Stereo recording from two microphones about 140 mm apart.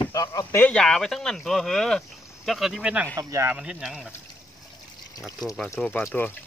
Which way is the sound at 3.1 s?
25° right (ahead or behind).